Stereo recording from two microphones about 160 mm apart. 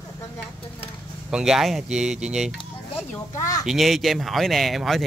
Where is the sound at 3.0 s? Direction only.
20° left (ahead or behind).